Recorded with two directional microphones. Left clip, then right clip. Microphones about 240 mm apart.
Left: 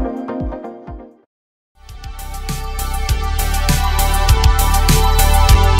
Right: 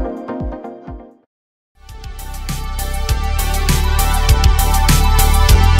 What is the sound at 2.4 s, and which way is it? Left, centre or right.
Music, centre.